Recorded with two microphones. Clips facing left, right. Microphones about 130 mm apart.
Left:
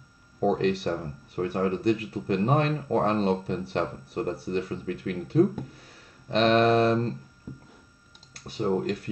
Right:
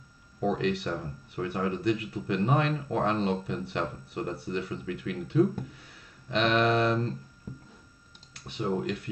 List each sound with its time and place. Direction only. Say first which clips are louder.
0.4 s speech: left 4 dB; 40° left (ahead or behind)
7.5 s a sound: left 1 dB; 5° left (ahead or behind)
8.3 s speech: left 4 dB; 40° left (ahead or behind)